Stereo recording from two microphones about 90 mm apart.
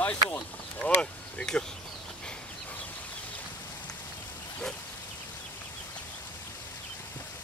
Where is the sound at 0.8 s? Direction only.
10° left (ahead or behind).